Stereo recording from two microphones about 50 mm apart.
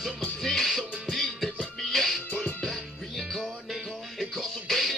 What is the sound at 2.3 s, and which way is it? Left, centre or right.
Music, left.